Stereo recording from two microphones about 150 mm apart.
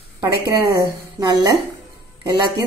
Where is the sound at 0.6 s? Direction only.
20° right (ahead or behind).